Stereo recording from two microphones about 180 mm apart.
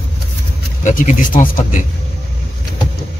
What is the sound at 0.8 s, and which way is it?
Speech, 45° left (ahead or behind).